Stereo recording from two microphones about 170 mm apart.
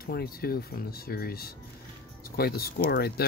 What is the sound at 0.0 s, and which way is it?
Speech, 60° left (ahead or behind).